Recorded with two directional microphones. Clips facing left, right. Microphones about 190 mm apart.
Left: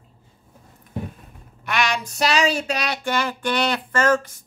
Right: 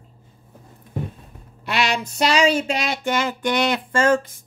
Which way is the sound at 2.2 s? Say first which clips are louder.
Right 3 dB; 30° right (ahead or behind).